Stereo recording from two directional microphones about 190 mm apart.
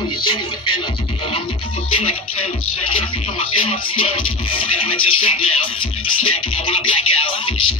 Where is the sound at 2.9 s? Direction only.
30° left (ahead or behind).